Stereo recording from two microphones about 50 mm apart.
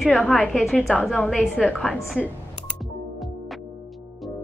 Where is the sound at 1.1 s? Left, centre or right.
Centre.